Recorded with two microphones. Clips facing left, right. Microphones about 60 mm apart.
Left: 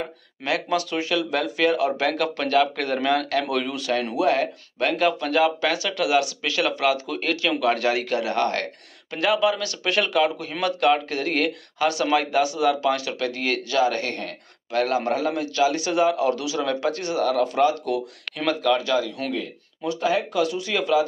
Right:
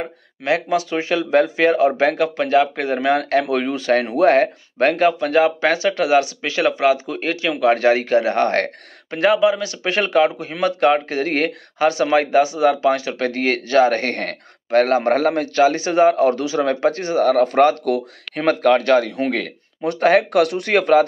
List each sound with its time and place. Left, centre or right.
0.7 s speech: right